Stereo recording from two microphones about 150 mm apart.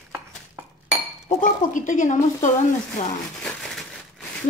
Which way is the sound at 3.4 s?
5° left (ahead or behind).